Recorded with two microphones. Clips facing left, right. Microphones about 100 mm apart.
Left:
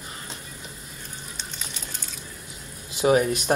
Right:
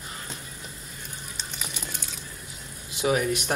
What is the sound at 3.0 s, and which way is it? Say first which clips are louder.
Speech: left 4 dB; 35° left (ahead or behind).